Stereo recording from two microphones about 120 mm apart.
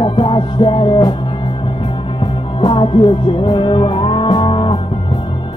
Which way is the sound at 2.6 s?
40° left (ahead or behind).